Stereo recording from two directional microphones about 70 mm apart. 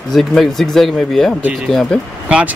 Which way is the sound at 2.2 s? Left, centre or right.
Centre.